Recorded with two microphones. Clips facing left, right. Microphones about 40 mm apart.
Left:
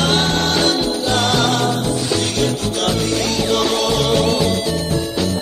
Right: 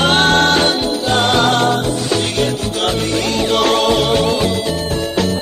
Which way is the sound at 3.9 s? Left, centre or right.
Right.